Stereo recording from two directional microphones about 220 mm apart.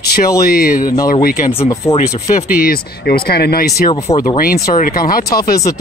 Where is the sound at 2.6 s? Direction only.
45° left (ahead or behind).